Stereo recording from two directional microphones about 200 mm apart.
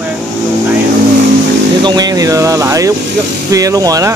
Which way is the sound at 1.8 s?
20° right (ahead or behind).